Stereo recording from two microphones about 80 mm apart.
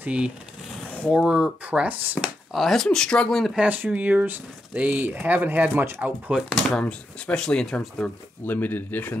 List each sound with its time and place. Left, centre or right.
0.0 s speech: centre
2.5 s speech: centre
3.5 s speech: centre
6.3 s speech: centre
8.5 s speech: left